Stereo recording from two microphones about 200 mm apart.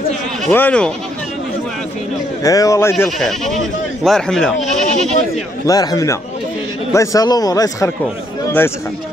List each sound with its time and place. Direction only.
0.5 s speech: 10° left (ahead or behind)
2.4 s speech: 15° left (ahead or behind)
3.2 s speech: centre (ahead or behind)
5.7 s speech: 20° left (ahead or behind)